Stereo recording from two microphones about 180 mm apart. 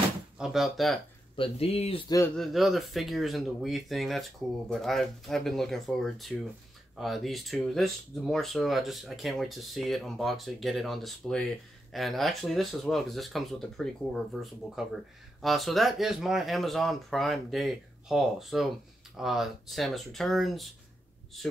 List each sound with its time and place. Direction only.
0.4 s speech: centre (ahead or behind)
1.3 s speech: 30° left (ahead or behind)
2.3 s speech: centre (ahead or behind)